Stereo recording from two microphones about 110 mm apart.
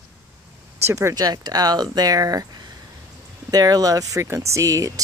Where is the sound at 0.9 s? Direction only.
25° right (ahead or behind).